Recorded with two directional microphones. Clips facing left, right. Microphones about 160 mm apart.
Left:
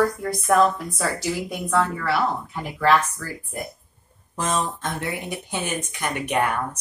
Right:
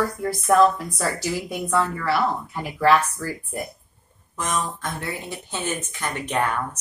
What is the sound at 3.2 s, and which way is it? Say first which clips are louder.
Speech: right 4 dB; 15° right (ahead or behind).